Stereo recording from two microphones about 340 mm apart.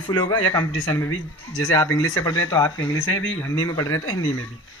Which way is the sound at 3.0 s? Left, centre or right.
Left.